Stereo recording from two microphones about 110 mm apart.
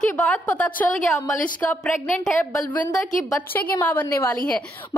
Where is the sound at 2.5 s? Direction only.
15° left (ahead or behind).